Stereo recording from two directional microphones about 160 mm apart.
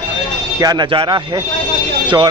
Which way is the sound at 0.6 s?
25° right (ahead or behind).